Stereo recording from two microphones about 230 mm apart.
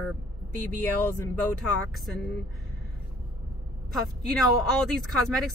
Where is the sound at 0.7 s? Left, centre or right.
Centre.